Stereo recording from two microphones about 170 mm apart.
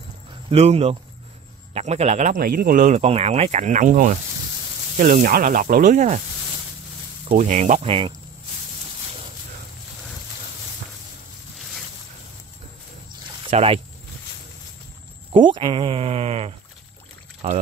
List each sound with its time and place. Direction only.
0.5 s speech: 40° right (ahead or behind); by 3.0 s 55° right (ahead or behind)
3.0 s speech: 40° right (ahead or behind)
7.3 s speech: 45° right (ahead or behind)
11.5 s a sound: centre (ahead or behind)
13.5 s speech: 35° right (ahead or behind)
15.3 s speech: 30° right (ahead or behind)